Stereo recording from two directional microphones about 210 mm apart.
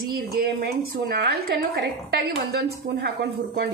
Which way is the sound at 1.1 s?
50° right (ahead or behind).